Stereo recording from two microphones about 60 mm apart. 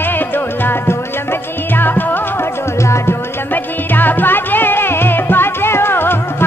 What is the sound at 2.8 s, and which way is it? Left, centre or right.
Music, left.